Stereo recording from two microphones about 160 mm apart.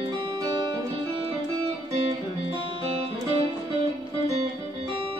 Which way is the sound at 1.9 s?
40° right (ahead or behind).